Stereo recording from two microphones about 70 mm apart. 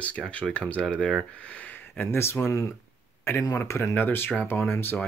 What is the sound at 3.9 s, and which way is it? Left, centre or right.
Speech, left.